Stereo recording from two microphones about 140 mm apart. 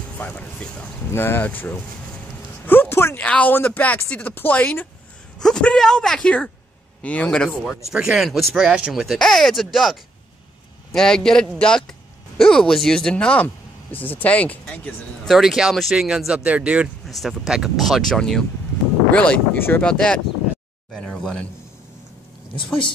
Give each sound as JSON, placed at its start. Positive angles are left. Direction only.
{"t": 0.2, "sound": "speech", "side_deg": 10}
{"t": 15.2, "sound": "speech", "side_deg": 0}